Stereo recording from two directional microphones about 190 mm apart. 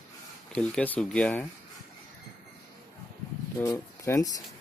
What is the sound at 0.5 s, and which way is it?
Speech, 5° left (ahead or behind).